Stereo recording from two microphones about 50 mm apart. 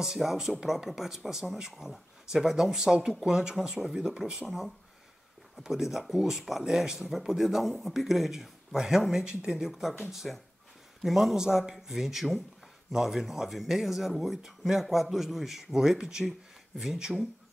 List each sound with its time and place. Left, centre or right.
0.0 s speech: centre
9.7 s speech: centre